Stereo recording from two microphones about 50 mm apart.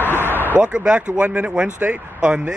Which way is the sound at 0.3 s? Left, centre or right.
Right.